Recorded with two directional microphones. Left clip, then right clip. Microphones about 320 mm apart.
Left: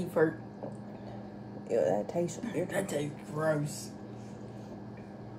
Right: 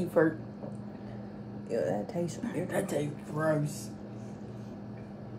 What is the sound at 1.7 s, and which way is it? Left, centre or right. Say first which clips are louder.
Speech: left 3 dB; centre.